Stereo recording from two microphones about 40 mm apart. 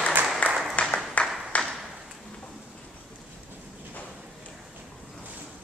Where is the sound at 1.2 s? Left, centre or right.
Left.